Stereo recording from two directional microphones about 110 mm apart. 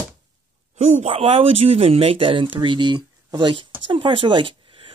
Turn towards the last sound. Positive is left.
turn(degrees=-50)  # may be behind; listen again after turning